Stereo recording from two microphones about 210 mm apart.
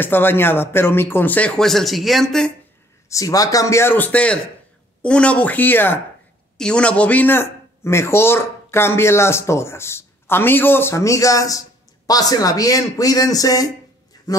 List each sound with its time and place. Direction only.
0.0 s a man's voice: 10° left (ahead or behind)
3.1 s a man's voice: 15° left (ahead or behind)